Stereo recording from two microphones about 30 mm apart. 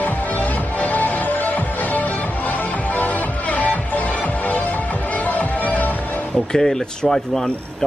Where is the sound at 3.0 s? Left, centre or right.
Left.